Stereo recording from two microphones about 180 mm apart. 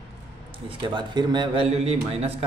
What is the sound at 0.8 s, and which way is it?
A man's voice, 25° right (ahead or behind).